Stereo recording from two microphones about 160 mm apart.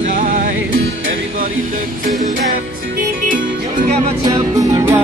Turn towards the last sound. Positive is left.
turn(degrees=-15)  # may be behind; listen again after turning